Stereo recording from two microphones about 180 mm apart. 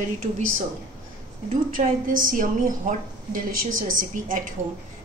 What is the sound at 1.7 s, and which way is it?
A woman's voice, 50° right (ahead or behind).